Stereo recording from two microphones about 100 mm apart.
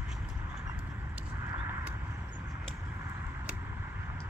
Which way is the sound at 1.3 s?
25° right (ahead or behind).